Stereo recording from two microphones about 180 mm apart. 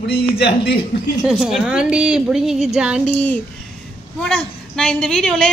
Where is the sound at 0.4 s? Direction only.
65° left (ahead or behind).